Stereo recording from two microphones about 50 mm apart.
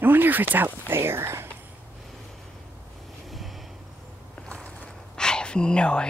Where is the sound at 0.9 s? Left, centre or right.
Right.